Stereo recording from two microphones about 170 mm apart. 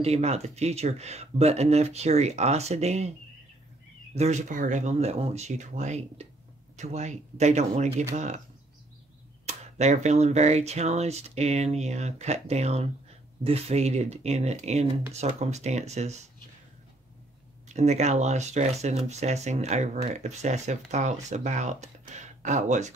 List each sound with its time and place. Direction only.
0.0 s speech: 40° right (ahead or behind)
4.1 s speech: 40° right (ahead or behind)
9.5 s speech: 40° right (ahead or behind)
17.7 s speech: 40° right (ahead or behind)